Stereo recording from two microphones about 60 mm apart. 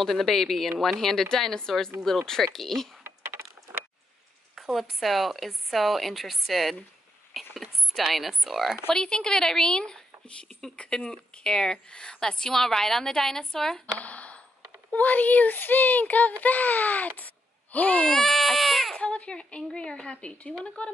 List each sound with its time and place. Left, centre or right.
0.0 s speech: centre
4.6 s speech: centre
8.9 s a woman's voice: centre
11.1 s a woman's voice: centre
13.9 s a sound: left
14.9 s speech: left
18.0 s speech: centre
18.9 s a woman's voice: centre